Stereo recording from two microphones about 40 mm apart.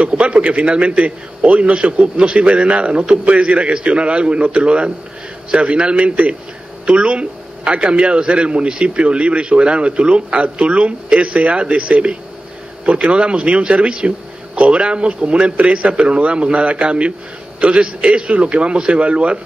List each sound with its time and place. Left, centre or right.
0.0 s a man's voice: right